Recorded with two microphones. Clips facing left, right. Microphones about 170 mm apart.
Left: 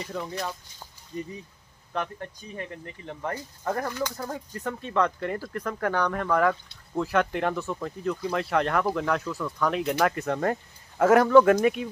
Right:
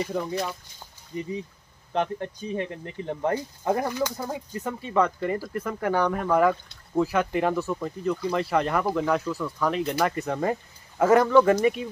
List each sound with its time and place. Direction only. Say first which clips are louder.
0.1 s speech: right 4 dB; 5° right (ahead or behind); by 3.3 s 30° right (ahead or behind)
3.6 s speech: right 3 dB; 15° right (ahead or behind); by 11.9 s centre (ahead or behind)